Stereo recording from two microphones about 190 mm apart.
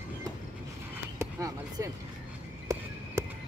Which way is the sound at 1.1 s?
15° right (ahead or behind).